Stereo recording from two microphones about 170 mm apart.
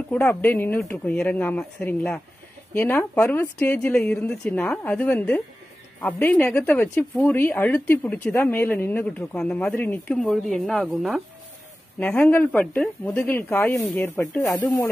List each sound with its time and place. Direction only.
0.1 s speech: 10° left (ahead or behind)